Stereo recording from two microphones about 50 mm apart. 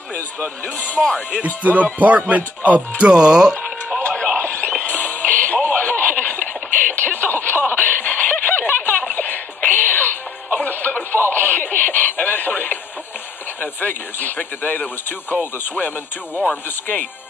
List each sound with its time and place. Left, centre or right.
1.0 s music: centre
1.4 s music: right
2.0 s speech: right
3.0 s speech: centre
4.4 s a sound: left
4.8 s music: left
5.8 s a sound: left
9.7 s music: left
10.6 s radio: left
13.6 s speech: left
16.4 s speech: left